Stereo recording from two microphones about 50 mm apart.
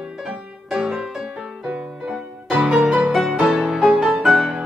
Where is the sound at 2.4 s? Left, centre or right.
Centre.